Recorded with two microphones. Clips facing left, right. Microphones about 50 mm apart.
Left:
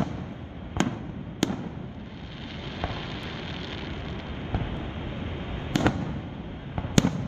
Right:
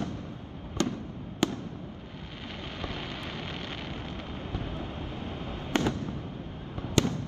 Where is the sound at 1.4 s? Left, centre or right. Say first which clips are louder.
Left 1 dB; centre.